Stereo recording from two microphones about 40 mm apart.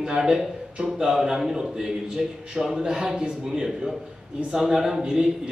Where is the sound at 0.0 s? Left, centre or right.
Centre.